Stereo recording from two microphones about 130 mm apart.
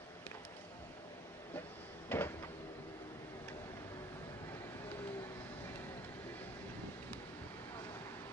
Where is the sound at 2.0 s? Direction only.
15° left (ahead or behind).